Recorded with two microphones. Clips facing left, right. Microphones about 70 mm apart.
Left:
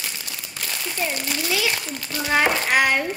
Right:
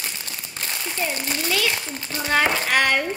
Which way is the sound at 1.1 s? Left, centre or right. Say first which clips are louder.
Even; right.